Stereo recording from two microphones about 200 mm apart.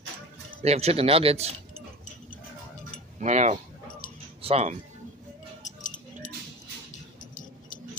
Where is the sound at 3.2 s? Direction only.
35° right (ahead or behind).